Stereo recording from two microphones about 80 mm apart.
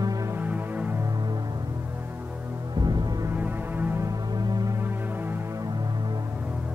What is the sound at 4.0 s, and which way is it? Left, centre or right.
Music, right.